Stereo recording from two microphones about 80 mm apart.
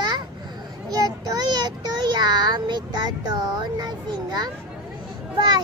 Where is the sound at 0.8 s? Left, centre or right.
Right.